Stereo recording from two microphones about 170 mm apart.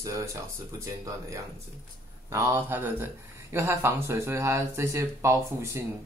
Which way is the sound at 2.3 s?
15° right (ahead or behind).